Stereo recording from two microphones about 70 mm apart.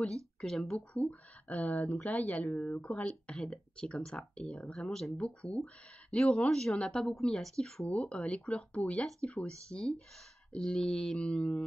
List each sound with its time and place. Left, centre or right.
0.0 s speech: centre
0.7 s speech: left
7.9 s speech: centre